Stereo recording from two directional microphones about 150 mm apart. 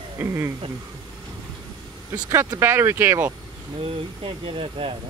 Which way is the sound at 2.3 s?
15° right (ahead or behind).